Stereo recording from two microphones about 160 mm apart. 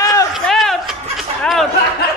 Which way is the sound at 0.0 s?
20° left (ahead or behind).